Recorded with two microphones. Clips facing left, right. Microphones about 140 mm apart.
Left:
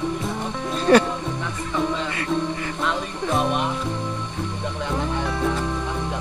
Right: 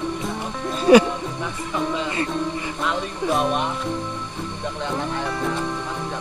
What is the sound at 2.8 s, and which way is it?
Music, centre (ahead or behind).